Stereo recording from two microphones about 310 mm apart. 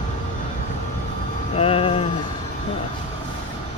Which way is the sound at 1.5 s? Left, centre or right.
Centre.